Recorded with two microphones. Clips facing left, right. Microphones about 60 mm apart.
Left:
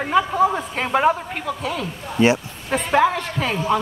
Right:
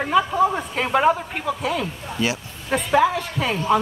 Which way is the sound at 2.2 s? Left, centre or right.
Left.